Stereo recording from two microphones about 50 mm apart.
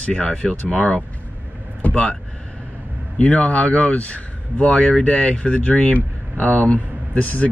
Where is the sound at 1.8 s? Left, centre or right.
Left.